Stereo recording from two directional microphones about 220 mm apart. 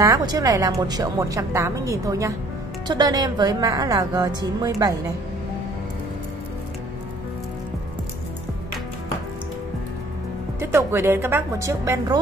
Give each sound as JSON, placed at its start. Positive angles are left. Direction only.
{"t": 0.0, "sound": "speech", "side_deg": -15}
{"t": 10.6, "sound": "speech", "side_deg": -10}